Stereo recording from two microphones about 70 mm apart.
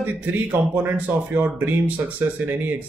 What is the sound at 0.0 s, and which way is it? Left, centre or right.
Speech, right.